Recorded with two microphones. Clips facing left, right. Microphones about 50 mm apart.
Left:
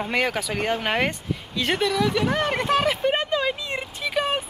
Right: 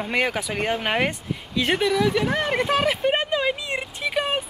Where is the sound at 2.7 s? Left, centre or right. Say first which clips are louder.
Left 1 dB; centre.